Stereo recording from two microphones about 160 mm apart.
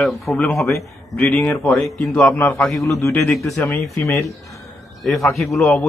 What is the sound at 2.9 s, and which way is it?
A man's voice, 15° left (ahead or behind).